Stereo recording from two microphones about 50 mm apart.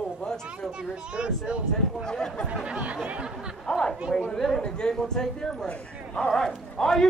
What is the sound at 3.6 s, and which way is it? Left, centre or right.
A man's voice, centre.